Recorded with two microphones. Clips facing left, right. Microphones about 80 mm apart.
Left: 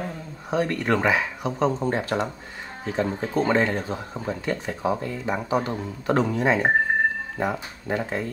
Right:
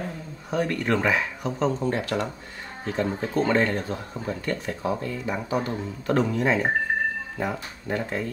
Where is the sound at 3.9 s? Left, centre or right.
Centre.